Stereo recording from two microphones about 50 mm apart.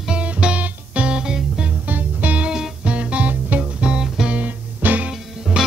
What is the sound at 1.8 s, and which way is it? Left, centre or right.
Music, right.